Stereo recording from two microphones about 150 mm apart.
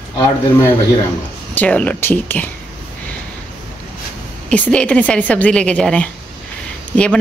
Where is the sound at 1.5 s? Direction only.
10° left (ahead or behind).